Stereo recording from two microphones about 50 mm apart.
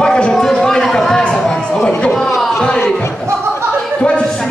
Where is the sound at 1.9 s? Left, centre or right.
Left.